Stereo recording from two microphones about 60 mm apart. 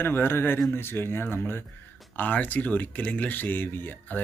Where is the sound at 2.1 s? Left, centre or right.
Left.